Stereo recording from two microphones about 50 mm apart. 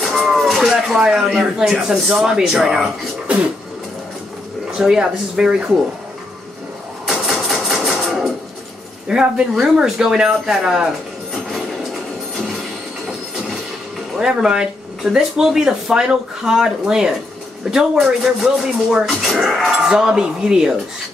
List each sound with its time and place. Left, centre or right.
0.0 s a sound: centre
0.6 s speech: centre
4.7 s speech: centre
7.1 s a sound: centre
9.0 s speech: centre
10.4 s speech: centre
14.1 s speech: centre
19.9 s speech: centre